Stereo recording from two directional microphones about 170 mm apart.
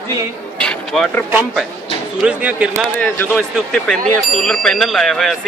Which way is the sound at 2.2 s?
5° right (ahead or behind).